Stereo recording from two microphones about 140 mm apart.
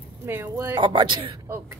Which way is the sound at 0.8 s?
35° right (ahead or behind).